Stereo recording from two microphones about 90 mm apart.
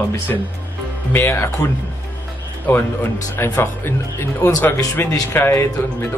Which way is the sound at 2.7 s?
20° left (ahead or behind).